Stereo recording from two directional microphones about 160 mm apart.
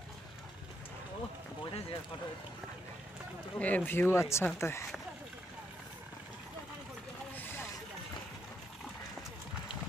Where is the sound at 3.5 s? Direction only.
10° left (ahead or behind).